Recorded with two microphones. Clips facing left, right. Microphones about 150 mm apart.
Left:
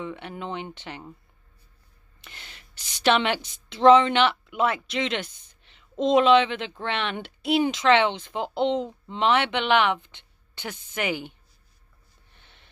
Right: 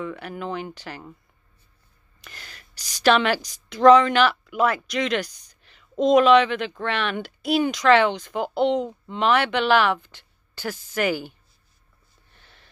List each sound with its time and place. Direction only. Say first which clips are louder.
0.0 s speech: right 3 dB; 25° left (ahead or behind)
2.2 s speech: right 3 dB; 25° left (ahead or behind)
12.4 s a sound: right 2 dB; 25° left (ahead or behind)